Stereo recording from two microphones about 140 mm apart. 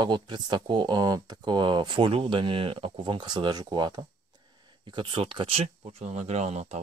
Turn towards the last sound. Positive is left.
turn(degrees=-50)  # may be behind; listen again after turning